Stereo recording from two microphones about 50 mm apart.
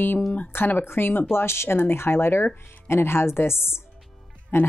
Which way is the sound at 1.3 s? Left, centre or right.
Left.